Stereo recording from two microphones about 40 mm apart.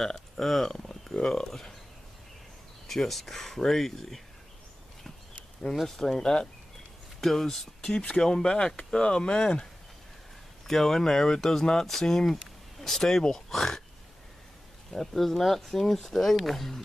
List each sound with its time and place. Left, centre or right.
0.4 s speech: centre
0.7 s a sound: centre
1.1 s speech: centre
2.9 s speech: centre
5.9 s speech: centre
10.7 s speech: centre
14.9 s speech: centre